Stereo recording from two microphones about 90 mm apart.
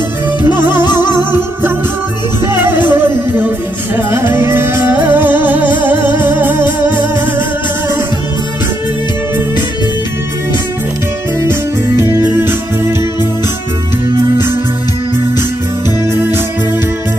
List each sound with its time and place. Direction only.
0.4 s music: 25° right (ahead or behind)
2.4 s music: 25° right (ahead or behind)
12.0 s music: 30° right (ahead or behind)
16.1 s music: 25° right (ahead or behind)